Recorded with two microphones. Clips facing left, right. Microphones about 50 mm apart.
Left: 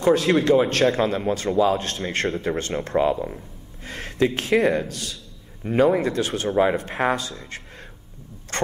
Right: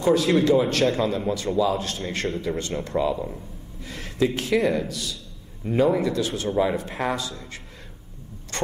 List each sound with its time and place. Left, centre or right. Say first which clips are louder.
0.1 s a man's voice: left 1 dB; left
6.5 s a man's voice: left 4 dB; left
8.5 s vehicle: left 3 dB; left